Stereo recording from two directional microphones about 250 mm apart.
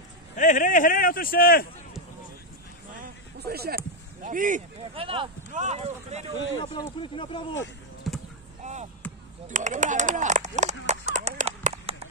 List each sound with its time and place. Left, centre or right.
0.4 s a man's voice: left
3.0 s speech: right
6.6 s speech: centre
8.6 s chop: right
9.5 s speech: right